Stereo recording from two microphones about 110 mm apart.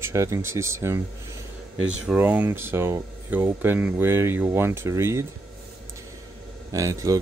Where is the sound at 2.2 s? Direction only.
20° right (ahead or behind).